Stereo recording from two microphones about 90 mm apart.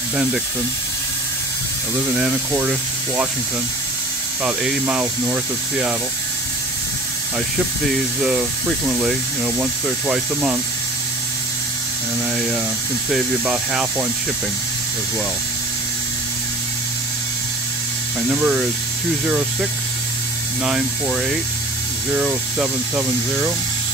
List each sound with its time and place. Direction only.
0.1 s speech: 10° right (ahead or behind)
2.0 s speech: 15° right (ahead or behind)
4.8 s speech: 15° right (ahead or behind)
7.3 s speech: 10° right (ahead or behind)
13.5 s speech: 15° right (ahead or behind)
18.3 s speech: 15° right (ahead or behind)